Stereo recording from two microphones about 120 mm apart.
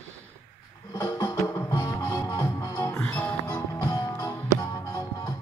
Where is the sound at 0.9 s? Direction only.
30° left (ahead or behind); by 3.3 s 15° left (ahead or behind).